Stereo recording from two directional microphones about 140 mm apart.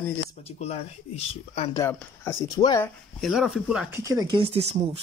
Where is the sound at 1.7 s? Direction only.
20° left (ahead or behind).